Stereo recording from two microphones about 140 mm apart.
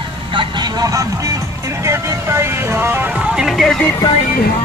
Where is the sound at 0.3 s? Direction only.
35° right (ahead or behind); by 3.9 s 5° left (ahead or behind).